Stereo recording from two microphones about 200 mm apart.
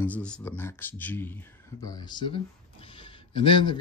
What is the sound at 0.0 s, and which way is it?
Speech, 5° left (ahead or behind).